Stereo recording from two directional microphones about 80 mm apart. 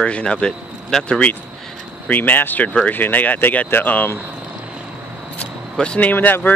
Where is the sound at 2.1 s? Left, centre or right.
Left.